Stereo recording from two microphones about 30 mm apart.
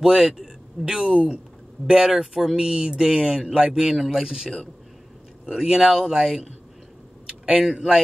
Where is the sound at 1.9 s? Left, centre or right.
Centre.